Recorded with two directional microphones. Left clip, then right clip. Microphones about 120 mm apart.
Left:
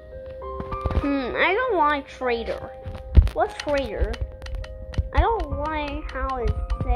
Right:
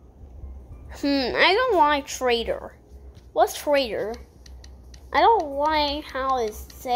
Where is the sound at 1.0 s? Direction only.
40° right (ahead or behind).